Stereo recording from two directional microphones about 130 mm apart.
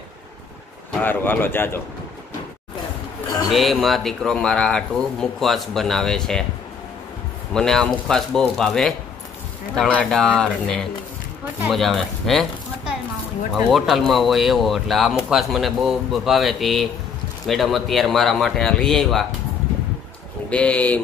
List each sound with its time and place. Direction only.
1.0 s speech: 15° left (ahead or behind)
3.4 s speech: centre (ahead or behind)
7.5 s speech: 5° left (ahead or behind)
13.7 s speech: centre (ahead or behind)
20.4 s speech: 10° left (ahead or behind)